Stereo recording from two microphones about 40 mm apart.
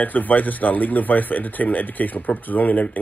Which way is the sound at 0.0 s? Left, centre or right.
Left.